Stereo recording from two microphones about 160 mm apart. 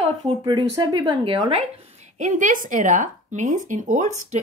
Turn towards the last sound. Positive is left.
turn(degrees=-45)  # may be behind; listen again after turning